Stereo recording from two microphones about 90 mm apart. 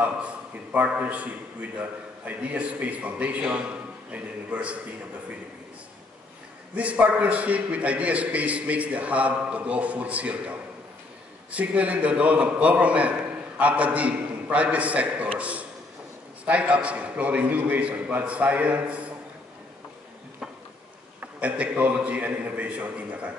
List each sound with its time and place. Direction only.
0.0 s a man's voice: 15° right (ahead or behind)
6.7 s a man's voice: 15° right (ahead or behind)
21.2 s a man's voice: 15° right (ahead or behind)